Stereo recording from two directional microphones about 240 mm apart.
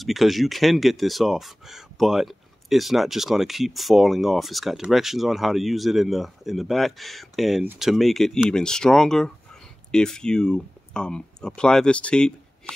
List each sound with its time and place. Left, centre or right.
0.0 s speech: centre